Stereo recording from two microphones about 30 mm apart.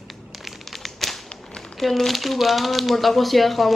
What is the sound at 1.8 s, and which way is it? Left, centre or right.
Speech, centre.